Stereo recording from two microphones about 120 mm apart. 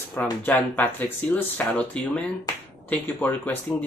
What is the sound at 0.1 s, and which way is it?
Speech, 15° left (ahead or behind).